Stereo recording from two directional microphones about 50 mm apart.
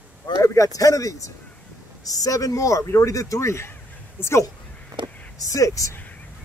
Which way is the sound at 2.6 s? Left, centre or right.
Left.